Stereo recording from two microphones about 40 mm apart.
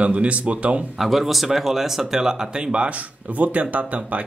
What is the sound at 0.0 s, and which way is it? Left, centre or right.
Speech, right.